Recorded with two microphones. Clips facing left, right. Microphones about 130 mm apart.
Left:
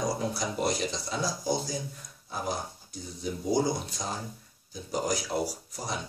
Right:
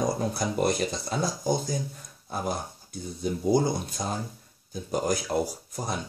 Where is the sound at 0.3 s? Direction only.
55° right (ahead or behind).